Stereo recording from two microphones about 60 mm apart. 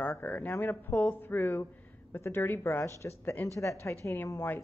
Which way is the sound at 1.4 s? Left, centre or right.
Left.